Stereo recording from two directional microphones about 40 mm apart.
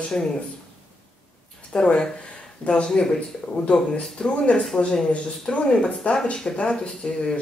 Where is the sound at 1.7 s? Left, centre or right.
Left.